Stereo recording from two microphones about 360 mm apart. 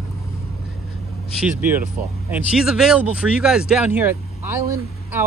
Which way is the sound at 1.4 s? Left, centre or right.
Centre.